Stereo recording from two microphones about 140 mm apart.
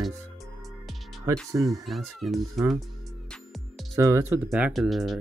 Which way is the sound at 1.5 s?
25° right (ahead or behind).